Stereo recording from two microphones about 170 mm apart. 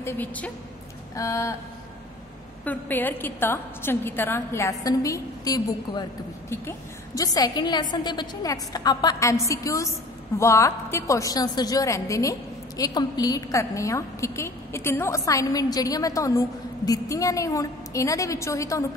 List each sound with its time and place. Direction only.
0.0 s a woman's voice: 10° left (ahead or behind)
2.6 s a woman's voice: 10° left (ahead or behind)
7.2 s a woman's voice: 20° left (ahead or behind)